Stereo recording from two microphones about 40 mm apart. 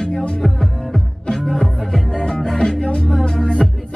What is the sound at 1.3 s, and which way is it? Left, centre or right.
Music, centre.